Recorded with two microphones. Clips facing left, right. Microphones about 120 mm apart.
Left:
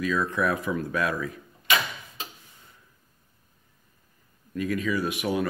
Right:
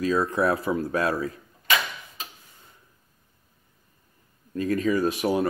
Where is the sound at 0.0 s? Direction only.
35° right (ahead or behind).